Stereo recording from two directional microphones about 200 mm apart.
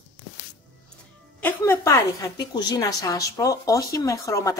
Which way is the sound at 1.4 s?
10° left (ahead or behind).